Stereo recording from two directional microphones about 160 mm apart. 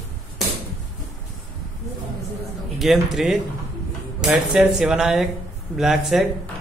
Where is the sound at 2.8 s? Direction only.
Centre (ahead or behind).